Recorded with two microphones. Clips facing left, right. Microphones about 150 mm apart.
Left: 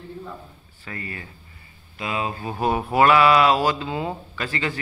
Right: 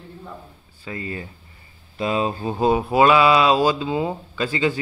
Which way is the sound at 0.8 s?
25° right (ahead or behind).